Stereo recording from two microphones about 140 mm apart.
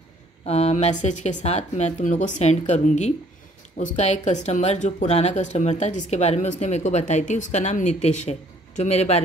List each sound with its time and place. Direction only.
0.5 s speech: 50° left (ahead or behind)